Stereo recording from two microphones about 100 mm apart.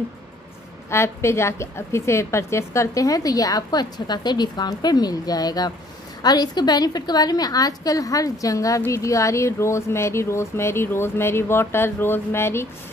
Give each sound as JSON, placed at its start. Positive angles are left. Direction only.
{"t": 0.8, "sound": "a woman's voice", "side_deg": 25}